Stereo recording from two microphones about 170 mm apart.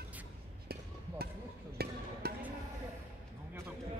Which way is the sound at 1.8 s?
70° right (ahead or behind).